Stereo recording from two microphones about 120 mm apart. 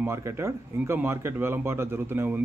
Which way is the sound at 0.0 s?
20° right (ahead or behind).